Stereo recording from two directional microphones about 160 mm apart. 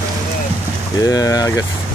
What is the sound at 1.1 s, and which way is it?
Speech, 20° left (ahead or behind).